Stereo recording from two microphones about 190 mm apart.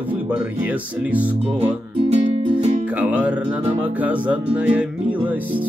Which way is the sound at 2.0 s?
35° right (ahead or behind).